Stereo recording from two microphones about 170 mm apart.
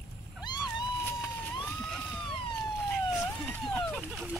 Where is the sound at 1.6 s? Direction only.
Centre (ahead or behind).